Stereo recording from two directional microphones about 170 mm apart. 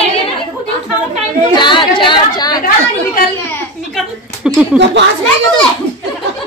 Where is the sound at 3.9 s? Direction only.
5° right (ahead or behind).